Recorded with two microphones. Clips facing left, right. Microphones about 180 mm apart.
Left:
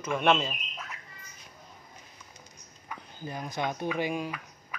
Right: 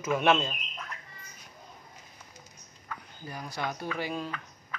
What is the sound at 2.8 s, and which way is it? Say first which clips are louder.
Speech: left 3 dB; 20° left (ahead or behind).